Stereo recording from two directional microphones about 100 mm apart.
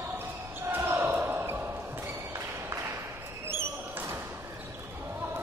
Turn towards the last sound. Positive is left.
turn(degrees=-25)  # may be behind; listen again after turning